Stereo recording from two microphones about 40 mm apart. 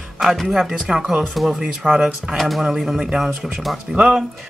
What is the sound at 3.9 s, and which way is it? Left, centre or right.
Speech, right.